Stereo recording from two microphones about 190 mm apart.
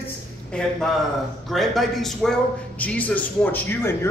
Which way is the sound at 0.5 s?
5° left (ahead or behind).